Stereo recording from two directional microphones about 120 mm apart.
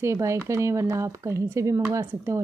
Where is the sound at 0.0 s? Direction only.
25° right (ahead or behind).